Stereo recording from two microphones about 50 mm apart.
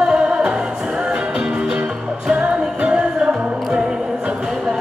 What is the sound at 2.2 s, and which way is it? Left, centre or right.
Music, right.